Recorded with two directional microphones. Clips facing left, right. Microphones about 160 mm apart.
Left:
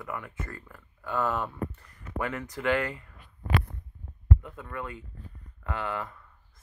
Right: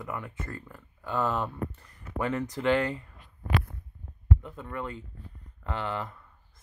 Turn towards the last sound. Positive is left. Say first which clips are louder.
# even
turn(degrees=-25)  # may be behind; listen again after turning